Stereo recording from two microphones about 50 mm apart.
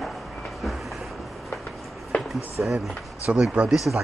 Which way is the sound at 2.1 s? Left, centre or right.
Left.